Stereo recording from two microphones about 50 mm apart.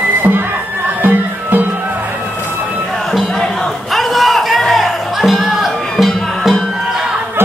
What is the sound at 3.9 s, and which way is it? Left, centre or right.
Music, centre.